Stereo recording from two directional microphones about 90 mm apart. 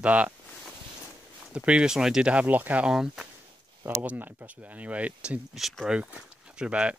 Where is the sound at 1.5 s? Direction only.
10° right (ahead or behind).